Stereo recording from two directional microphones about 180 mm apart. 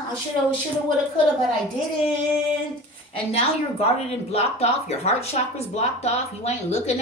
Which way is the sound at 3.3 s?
35° left (ahead or behind).